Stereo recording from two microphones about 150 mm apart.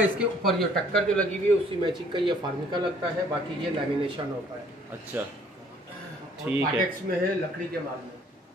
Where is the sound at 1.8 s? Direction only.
35° right (ahead or behind).